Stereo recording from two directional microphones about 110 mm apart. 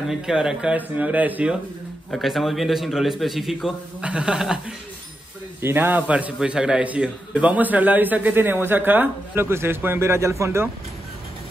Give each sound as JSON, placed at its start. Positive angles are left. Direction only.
{"t": 0.1, "sound": "a man's voice", "side_deg": -5}
{"t": 2.0, "sound": "a man's voice", "side_deg": 0}
{"t": 5.6, "sound": "a man's voice", "side_deg": -20}